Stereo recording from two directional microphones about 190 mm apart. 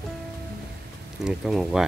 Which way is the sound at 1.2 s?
Centre (ahead or behind).